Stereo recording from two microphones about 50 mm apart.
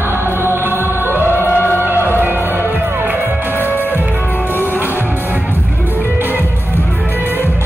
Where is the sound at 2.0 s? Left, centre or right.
Right.